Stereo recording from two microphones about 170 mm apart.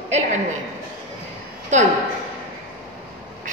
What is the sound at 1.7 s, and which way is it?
Speech, 45° right (ahead or behind).